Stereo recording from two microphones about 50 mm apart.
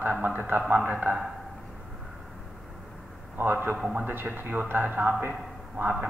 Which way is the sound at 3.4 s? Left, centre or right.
Right.